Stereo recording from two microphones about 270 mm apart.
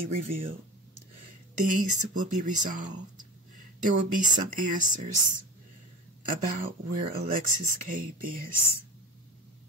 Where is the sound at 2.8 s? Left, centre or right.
Right.